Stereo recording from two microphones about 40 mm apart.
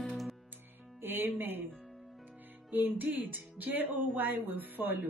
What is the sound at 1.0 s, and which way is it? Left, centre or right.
Music, right.